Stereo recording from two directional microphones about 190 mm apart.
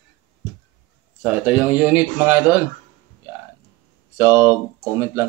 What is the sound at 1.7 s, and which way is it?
Speech, 5° right (ahead or behind).